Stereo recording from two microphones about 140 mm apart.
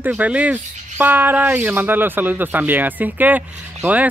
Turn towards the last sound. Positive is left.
turn(degrees=-10)  # may be behind; listen again after turning